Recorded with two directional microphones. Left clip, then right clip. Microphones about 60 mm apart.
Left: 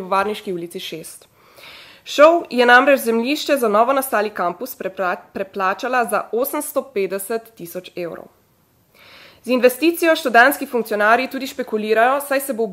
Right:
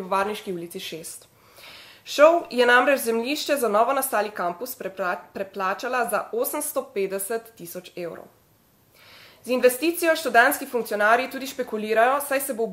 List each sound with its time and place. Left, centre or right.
0.1 s speech: left
9.4 s speech: left